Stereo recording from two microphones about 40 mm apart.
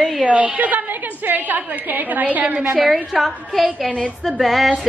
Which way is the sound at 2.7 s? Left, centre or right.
Centre.